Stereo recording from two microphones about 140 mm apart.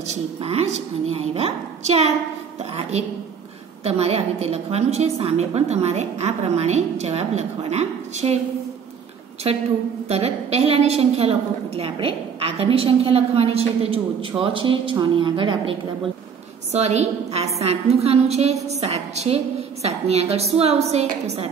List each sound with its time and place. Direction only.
0.1 s a woman's voice: 50° right (ahead or behind)
3.8 s a woman's voice: 50° right (ahead or behind)
10.0 s a woman's voice: 50° right (ahead or behind)
16.7 s a woman's voice: 50° right (ahead or behind)